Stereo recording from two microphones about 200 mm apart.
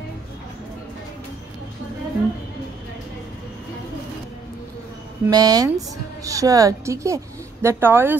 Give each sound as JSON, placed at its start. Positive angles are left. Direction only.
{"t": 5.2, "sound": "a woman's voice", "side_deg": -20}